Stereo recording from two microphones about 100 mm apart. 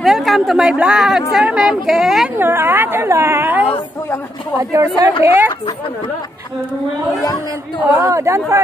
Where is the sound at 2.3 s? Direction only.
20° right (ahead or behind).